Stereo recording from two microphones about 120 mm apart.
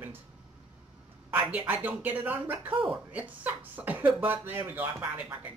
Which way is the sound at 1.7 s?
15° right (ahead or behind).